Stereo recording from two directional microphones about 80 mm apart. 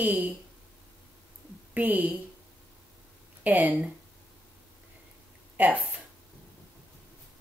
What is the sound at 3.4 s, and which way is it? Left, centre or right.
Speech, centre.